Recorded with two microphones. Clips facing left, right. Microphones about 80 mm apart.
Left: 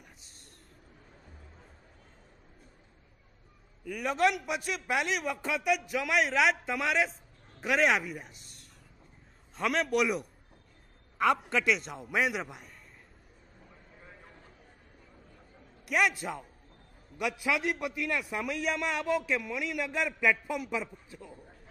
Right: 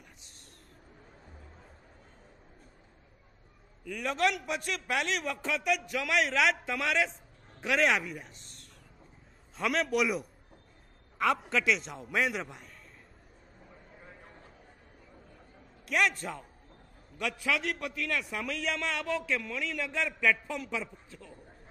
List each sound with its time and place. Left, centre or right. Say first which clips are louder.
3.8 s a man's voice: left 2 dB; centre
13.7 s vehicle: right 2 dB; centre
15.8 s a man's voice: left 1 dB; centre